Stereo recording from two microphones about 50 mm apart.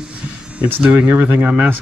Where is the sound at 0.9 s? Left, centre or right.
Right.